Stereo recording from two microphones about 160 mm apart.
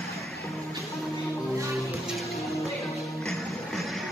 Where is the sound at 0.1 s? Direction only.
Centre (ahead or behind).